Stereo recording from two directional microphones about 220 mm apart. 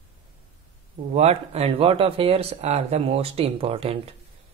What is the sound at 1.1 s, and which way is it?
Speech, 30° right (ahead or behind).